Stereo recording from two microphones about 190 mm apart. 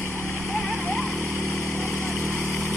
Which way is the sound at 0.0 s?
15° left (ahead or behind).